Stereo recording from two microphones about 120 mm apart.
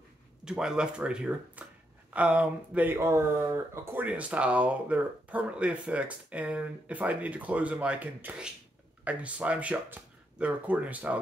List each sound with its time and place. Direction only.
0.5 s speech: 5° right (ahead or behind)